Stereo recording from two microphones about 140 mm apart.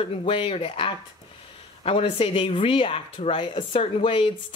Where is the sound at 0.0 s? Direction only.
40° left (ahead or behind).